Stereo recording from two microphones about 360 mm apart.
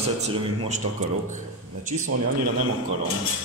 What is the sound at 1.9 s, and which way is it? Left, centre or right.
Speech, right.